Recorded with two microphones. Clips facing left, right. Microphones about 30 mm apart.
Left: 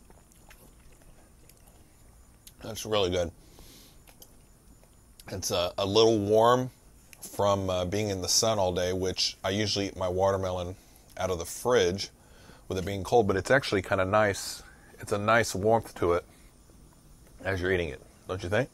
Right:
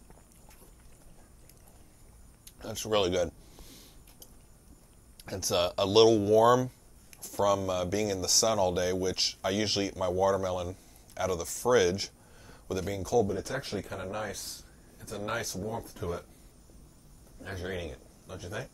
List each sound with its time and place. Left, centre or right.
2.6 s a sound: centre
5.2 s speech: centre
13.0 s speech: left
13.3 s speech: left
17.4 s speech: left